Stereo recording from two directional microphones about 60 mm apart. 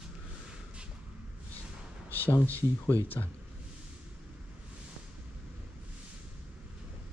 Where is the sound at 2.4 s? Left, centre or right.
Left.